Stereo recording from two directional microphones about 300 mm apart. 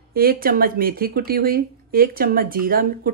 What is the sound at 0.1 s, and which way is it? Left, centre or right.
Speech, right.